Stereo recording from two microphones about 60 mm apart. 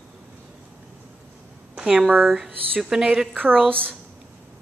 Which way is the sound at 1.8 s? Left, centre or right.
Centre.